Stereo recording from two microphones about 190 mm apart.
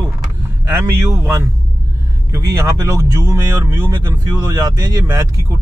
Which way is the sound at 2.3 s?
15° right (ahead or behind).